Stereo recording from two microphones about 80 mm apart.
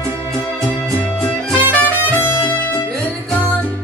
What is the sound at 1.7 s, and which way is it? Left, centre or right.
Music, left.